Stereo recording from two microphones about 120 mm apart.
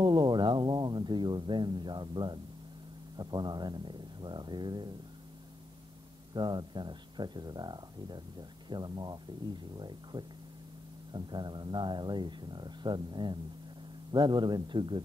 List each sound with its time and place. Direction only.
0.0 s speech: 35° right (ahead or behind)
6.3 s speech: 35° right (ahead or behind)